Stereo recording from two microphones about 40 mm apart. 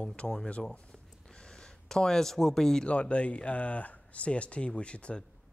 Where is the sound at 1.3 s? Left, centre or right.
Left.